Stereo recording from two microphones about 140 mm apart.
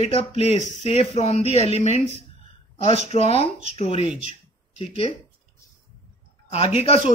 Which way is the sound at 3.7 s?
45° left (ahead or behind).